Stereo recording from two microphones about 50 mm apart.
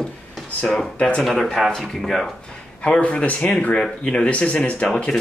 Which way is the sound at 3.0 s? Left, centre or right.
Left.